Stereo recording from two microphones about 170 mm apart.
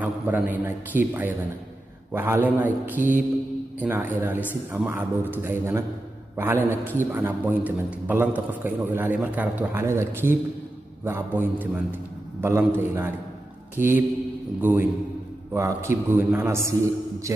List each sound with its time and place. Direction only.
0.0 s a man's voice: 10° right (ahead or behind)